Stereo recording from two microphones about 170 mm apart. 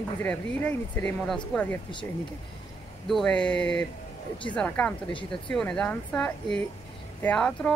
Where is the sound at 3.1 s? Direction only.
5° left (ahead or behind).